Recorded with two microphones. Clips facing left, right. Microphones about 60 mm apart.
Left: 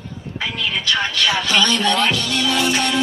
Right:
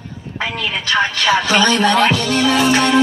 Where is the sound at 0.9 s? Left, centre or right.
Right.